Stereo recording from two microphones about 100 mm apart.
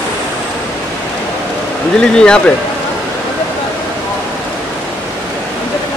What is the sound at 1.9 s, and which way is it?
Speech, 10° left (ahead or behind).